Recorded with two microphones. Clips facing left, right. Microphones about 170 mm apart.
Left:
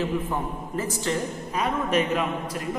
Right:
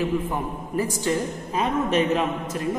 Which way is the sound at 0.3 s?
15° right (ahead or behind).